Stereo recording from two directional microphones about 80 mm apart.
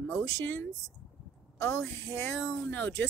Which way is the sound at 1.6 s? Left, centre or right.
Left.